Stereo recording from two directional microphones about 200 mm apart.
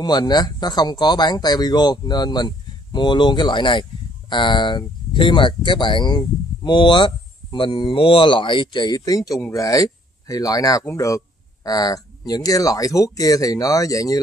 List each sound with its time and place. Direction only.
0.0 s speech: 20° left (ahead or behind)